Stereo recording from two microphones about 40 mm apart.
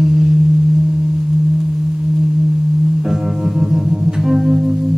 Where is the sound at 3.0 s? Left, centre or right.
Centre.